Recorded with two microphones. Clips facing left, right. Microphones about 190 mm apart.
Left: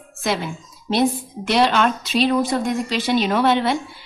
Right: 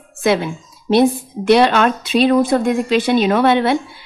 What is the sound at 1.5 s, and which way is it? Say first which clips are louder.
A woman's voice: right 5 dB; 60° right (ahead or behind).